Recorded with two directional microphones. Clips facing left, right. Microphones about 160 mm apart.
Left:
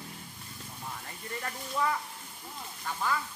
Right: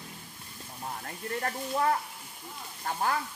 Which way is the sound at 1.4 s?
55° right (ahead or behind).